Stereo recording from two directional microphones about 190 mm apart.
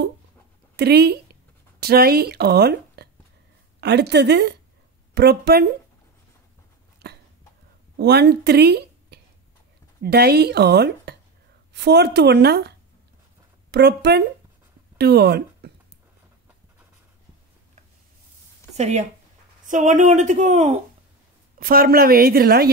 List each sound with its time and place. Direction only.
0.7 s a woman's voice: 60° right (ahead or behind)
7.0 s a sound: 60° right (ahead or behind)
8.0 s a woman's voice: 60° right (ahead or behind)
18.8 s speech: 35° right (ahead or behind)
21.5 s a woman's voice: 50° right (ahead or behind)